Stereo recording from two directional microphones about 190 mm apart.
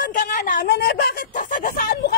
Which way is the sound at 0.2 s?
45° left (ahead or behind).